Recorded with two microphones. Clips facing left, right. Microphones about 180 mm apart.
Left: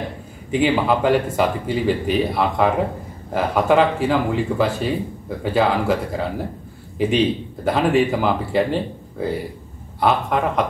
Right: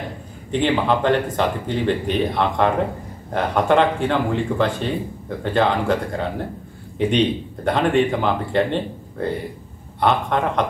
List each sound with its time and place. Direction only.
0.5 s speech: 5° left (ahead or behind)